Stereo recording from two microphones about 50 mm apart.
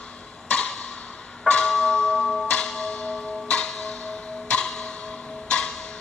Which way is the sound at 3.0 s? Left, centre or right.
Left.